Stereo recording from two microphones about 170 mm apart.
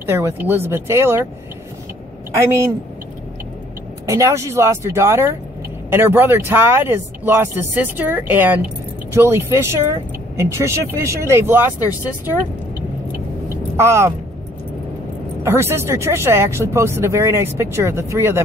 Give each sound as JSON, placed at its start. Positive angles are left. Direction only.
{"t": 0.0, "sound": "speech", "side_deg": -15}
{"t": 4.1, "sound": "speech", "side_deg": -15}
{"t": 13.5, "sound": "vehicle", "side_deg": -15}
{"t": 15.4, "sound": "speech", "side_deg": -15}